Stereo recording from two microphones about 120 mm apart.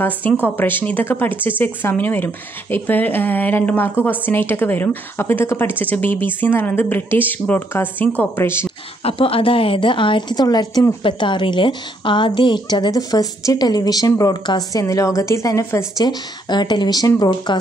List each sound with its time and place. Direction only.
0.0 s a woman's voice: 15° left (ahead or behind)
9.0 s a woman's voice: 50° left (ahead or behind); by 16.1 s 25° left (ahead or behind)
16.1 s a woman's voice: 35° left (ahead or behind)